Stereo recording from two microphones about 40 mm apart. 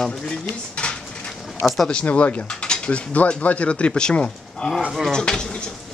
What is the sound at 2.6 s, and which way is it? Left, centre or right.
Mechanisms, left.